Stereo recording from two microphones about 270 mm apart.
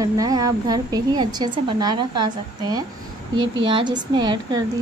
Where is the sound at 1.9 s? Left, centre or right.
Right.